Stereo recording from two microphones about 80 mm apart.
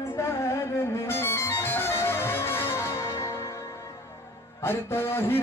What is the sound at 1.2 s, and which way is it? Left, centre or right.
Music, left.